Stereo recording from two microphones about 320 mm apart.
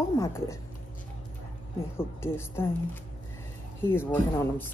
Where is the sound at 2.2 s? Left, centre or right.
Centre.